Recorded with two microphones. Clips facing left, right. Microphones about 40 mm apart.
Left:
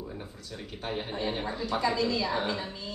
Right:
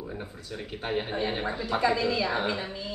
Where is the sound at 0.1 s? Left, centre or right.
Centre.